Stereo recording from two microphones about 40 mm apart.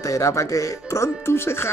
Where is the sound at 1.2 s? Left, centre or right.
Left.